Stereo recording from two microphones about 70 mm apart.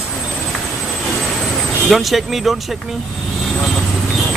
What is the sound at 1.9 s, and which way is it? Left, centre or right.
Speech, centre.